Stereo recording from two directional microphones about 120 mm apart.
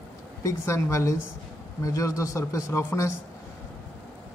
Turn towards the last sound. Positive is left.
turn(degrees=20)  # may be behind; listen again after turning